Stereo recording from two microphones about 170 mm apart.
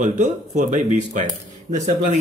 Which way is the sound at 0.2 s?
50° right (ahead or behind).